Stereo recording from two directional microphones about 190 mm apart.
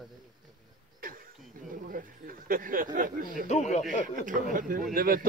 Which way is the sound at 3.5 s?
40° left (ahead or behind).